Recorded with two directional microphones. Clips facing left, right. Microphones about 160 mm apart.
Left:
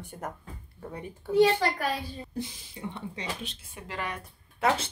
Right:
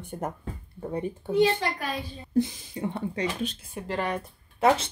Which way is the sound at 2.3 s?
50° right (ahead or behind).